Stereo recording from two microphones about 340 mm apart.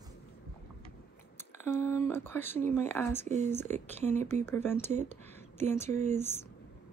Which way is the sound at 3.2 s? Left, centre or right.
Right.